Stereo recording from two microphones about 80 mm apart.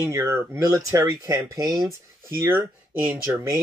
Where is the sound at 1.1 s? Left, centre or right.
Right.